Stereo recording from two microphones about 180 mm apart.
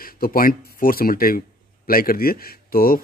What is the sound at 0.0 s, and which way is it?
Speech, 55° left (ahead or behind).